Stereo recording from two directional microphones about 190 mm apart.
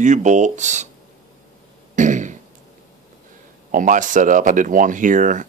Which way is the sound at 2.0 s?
40° right (ahead or behind).